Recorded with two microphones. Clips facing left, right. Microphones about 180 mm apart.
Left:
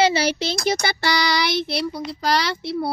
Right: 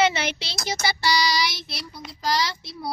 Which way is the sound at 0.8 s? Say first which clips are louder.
Left 1 dB; 60° left (ahead or behind).